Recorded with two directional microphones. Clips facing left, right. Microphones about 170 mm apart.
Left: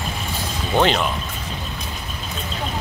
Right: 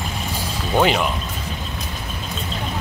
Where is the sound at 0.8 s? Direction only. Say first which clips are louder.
Even; 10° right (ahead or behind).